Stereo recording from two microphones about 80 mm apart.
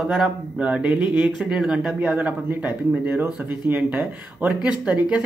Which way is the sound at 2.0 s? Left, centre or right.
Centre.